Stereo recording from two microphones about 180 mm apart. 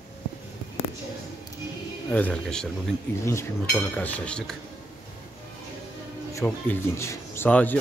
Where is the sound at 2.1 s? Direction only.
10° left (ahead or behind).